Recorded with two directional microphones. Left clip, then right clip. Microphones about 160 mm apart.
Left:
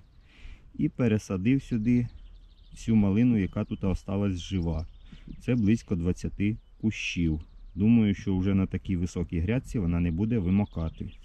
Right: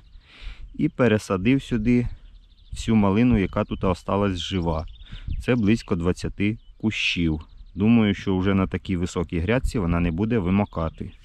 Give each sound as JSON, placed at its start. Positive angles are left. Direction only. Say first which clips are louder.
{"t": 0.3, "sound": "speech", "louder": "right 8 dB", "side_deg": 15}